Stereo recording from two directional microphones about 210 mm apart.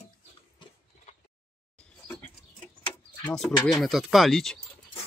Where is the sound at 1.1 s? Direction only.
35° left (ahead or behind).